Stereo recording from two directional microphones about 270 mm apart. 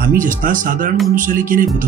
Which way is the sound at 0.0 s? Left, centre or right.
Right.